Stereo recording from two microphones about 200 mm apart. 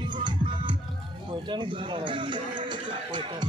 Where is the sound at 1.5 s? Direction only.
25° right (ahead or behind).